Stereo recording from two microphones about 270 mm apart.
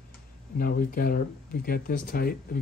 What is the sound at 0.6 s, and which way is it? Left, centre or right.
Speech, left.